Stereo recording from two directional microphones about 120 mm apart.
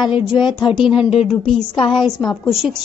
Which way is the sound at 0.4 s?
40° left (ahead or behind).